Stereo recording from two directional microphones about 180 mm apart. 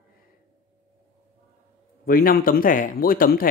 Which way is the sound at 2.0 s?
55° left (ahead or behind).